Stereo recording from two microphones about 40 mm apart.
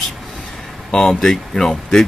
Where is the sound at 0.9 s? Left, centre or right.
Centre.